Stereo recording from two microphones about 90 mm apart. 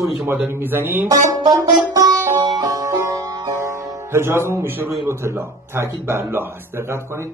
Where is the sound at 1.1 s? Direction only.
40° right (ahead or behind).